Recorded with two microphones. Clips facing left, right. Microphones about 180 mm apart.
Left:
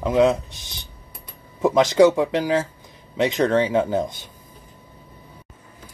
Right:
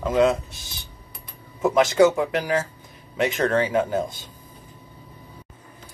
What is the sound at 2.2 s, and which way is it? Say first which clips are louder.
Speech: left 3 dB; 25° left (ahead or behind).